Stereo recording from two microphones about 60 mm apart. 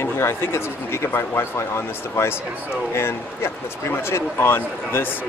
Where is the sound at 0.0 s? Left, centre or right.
Left.